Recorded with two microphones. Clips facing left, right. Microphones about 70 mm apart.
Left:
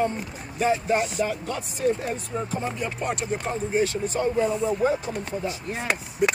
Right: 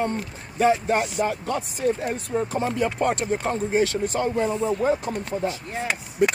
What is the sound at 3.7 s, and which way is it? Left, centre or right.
Speech, right.